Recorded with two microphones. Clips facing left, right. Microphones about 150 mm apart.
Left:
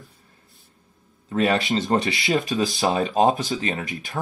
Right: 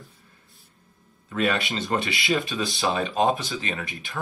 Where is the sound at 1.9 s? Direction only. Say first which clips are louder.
Left 2 dB; 35° left (ahead or behind).